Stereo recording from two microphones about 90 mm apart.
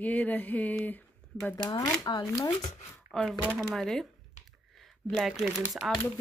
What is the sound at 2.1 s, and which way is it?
Speech, 50° left (ahead or behind).